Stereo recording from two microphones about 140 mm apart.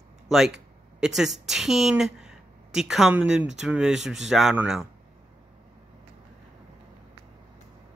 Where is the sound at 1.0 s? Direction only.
5° right (ahead or behind).